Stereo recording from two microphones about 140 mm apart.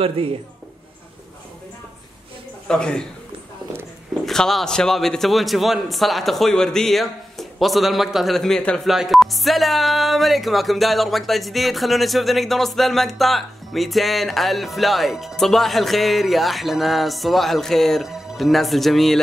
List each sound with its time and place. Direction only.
0.2 s speech: 40° right (ahead or behind)
2.7 s a man's voice: 5° left (ahead or behind)
4.3 s a man's voice: centre (ahead or behind)